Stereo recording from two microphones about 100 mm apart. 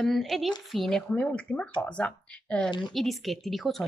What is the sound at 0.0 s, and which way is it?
Speech, centre (ahead or behind).